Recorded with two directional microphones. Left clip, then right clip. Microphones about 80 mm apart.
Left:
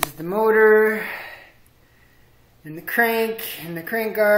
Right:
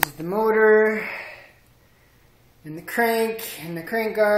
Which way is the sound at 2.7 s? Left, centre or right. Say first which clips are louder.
Left 2 dB; centre.